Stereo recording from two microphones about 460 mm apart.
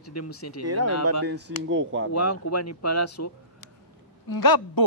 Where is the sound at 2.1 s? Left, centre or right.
Left.